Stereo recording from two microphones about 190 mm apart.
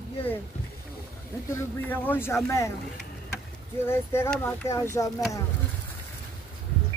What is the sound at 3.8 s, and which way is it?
Speech, 15° left (ahead or behind).